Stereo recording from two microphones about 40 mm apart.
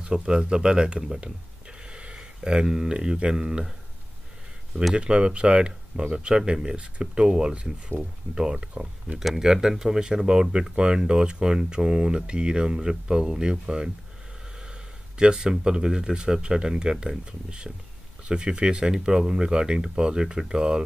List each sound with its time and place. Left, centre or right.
0.0 s speech: centre
4.9 s speech: right